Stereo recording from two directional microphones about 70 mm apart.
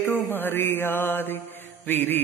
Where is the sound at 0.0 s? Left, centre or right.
Left.